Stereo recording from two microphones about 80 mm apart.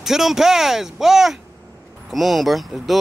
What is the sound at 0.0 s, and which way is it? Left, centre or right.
Speech, centre.